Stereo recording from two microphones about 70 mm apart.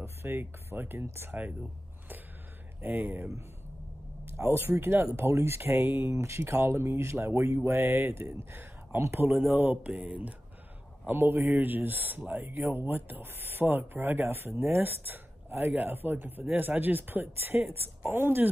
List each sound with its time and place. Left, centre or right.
0.0 s speech: right
2.8 s speech: right
11.1 s speech: right